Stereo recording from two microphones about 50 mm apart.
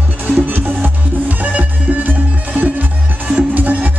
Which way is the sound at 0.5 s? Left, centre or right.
Right.